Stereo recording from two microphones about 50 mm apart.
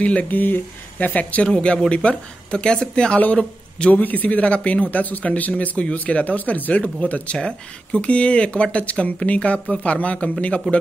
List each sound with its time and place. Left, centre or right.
0.0 s speech: left
1.5 s speech: centre
3.8 s speech: left
7.3 s speech: centre